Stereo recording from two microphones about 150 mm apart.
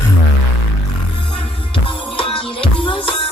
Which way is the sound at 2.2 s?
35° left (ahead or behind).